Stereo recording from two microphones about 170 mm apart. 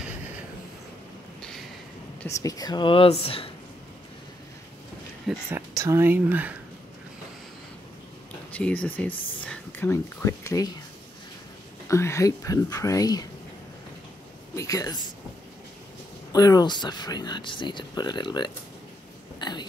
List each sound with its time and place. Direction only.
2.2 s speech: 20° left (ahead or behind)
5.3 s speech: 15° right (ahead or behind)
8.5 s speech: 10° left (ahead or behind)
11.9 s speech: 15° left (ahead or behind)
14.5 s speech: 20° left (ahead or behind)
16.3 s speech: 20° left (ahead or behind)
19.4 s a sound: 25° left (ahead or behind)